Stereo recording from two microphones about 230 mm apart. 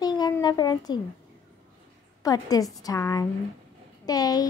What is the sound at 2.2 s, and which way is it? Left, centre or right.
Speech, centre.